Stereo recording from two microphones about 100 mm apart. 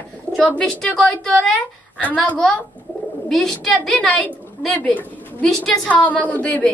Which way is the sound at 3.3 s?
Centre (ahead or behind).